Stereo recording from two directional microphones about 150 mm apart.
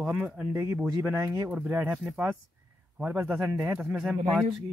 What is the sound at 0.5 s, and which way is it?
A man's voice, 20° right (ahead or behind).